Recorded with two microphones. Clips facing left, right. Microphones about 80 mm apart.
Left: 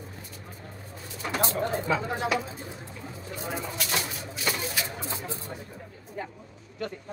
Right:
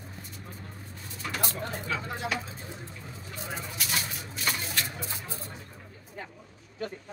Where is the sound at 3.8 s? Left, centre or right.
Centre.